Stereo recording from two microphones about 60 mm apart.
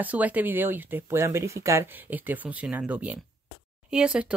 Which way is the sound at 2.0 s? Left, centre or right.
Right.